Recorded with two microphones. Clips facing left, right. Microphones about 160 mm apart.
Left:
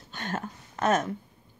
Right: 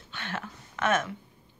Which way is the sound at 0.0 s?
40° left (ahead or behind).